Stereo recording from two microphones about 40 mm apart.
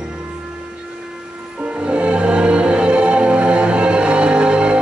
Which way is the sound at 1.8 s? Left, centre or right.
Right.